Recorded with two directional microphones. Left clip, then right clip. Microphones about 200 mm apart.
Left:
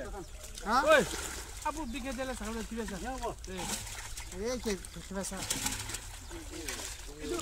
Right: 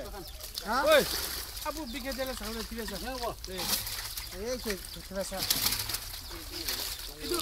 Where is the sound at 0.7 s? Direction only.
45° left (ahead or behind).